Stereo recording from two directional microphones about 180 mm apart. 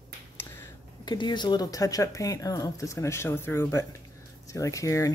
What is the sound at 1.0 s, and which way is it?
Speech, 25° left (ahead or behind).